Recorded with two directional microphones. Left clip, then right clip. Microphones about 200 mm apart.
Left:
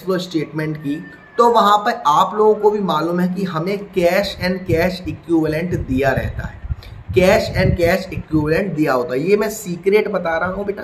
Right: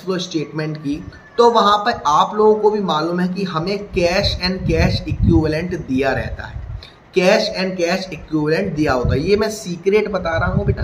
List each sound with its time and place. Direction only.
0.1 s speech: 10° left (ahead or behind)